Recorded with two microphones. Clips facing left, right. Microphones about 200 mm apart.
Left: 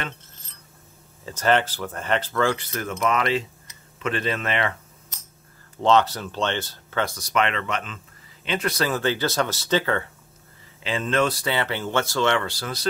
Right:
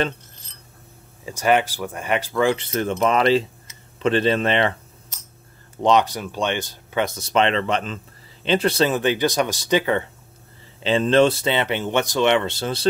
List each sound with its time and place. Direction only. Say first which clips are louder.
1.2 s speech: right 2 dB; 10° right (ahead or behind); by 4.7 s 30° right (ahead or behind)
5.8 s speech: right 1 dB; 15° right (ahead or behind)
10.8 s speech: right 7 dB; 30° right (ahead or behind)